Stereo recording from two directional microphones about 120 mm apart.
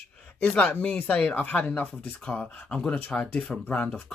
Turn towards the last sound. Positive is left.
turn(degrees=10)  # may be behind; listen again after turning